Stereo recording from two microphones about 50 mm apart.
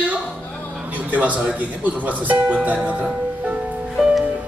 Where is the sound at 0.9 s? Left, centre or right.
Right.